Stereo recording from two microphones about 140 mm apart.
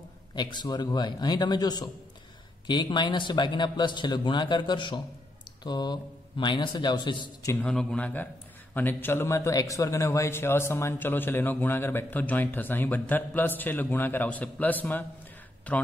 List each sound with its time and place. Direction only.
0.4 s a man's voice: 30° left (ahead or behind)
7.5 s a man's voice: 5° left (ahead or behind)